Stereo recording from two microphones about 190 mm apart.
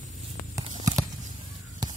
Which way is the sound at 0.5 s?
20° right (ahead or behind).